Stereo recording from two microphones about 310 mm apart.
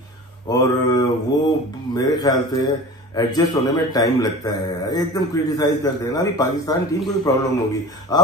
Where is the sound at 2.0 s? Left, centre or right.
Centre.